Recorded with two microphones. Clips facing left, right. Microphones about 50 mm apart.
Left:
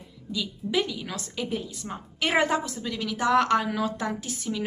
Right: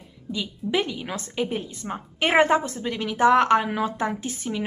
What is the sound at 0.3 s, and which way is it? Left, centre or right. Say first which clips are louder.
A woman's voice: right 2 dB; right.